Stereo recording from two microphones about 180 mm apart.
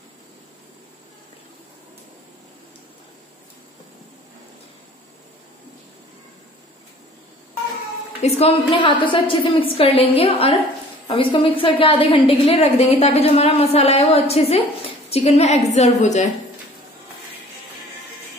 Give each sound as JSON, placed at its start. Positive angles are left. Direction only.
{"t": 8.2, "sound": "a woman's voice", "side_deg": 35}